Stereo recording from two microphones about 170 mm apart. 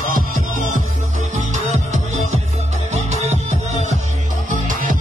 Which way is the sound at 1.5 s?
45° right (ahead or behind).